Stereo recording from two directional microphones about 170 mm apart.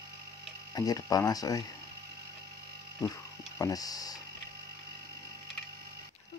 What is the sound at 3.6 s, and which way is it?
Speech, 20° left (ahead or behind).